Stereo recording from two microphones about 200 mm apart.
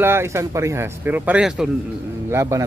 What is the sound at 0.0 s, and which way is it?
Speech, 10° right (ahead or behind).